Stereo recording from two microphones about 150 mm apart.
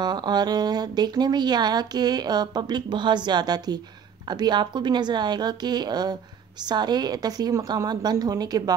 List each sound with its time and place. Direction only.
0.0 s speech: 30° right (ahead or behind)